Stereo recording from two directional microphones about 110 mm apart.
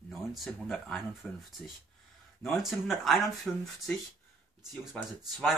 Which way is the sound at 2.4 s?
Centre (ahead or behind).